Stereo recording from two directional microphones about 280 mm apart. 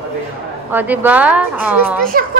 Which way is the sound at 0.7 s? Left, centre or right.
Centre.